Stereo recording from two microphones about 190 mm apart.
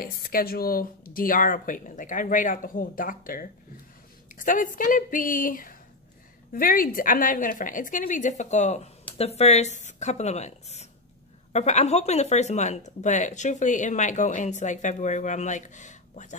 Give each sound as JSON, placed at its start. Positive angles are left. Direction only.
{"t": 0.0, "sound": "speech", "side_deg": 50}